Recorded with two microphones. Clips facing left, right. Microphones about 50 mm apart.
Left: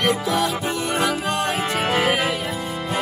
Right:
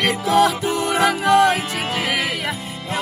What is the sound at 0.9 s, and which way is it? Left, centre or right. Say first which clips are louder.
Music: right 9 dB; right.